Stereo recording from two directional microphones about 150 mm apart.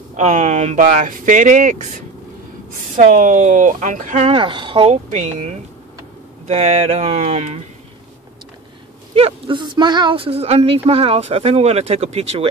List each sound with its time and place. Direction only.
0.1 s speech: 50° right (ahead or behind)
4.3 s speech: 35° right (ahead or behind)
9.1 s speech: 35° right (ahead or behind)